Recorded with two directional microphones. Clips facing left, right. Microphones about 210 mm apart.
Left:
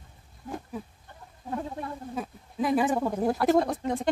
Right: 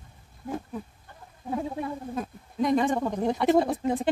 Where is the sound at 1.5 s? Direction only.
10° right (ahead or behind).